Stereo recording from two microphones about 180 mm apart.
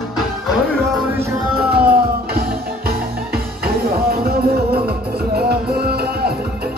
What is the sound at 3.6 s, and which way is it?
Music, 55° right (ahead or behind).